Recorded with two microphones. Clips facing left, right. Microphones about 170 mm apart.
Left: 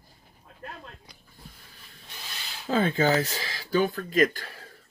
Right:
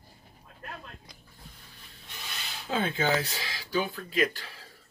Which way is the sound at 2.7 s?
40° left (ahead or behind).